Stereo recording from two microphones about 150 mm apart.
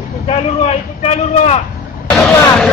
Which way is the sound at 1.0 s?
45° left (ahead or behind).